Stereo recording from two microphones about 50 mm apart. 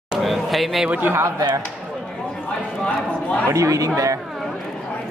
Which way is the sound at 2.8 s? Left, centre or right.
Centre.